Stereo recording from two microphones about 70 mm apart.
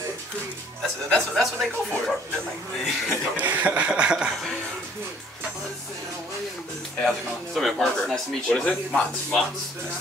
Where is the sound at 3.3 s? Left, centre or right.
Right.